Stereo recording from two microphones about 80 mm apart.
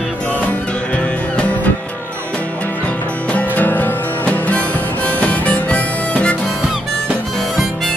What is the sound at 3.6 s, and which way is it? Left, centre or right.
Music, left.